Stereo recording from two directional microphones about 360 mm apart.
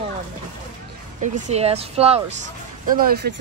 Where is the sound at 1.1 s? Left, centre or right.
Centre.